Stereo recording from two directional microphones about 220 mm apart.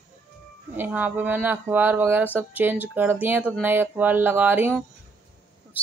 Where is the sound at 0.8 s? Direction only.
10° right (ahead or behind).